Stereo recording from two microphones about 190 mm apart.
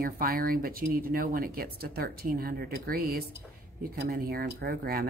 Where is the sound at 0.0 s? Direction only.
50° right (ahead or behind).